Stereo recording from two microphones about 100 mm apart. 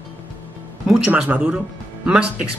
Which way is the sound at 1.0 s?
15° right (ahead or behind).